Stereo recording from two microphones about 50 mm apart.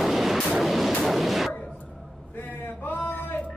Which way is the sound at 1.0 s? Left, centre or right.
Centre.